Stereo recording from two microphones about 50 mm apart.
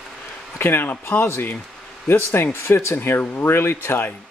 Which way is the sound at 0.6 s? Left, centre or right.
Left.